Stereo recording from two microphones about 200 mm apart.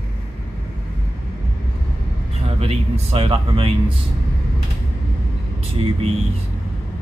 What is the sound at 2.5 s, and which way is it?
Speech, 30° right (ahead or behind).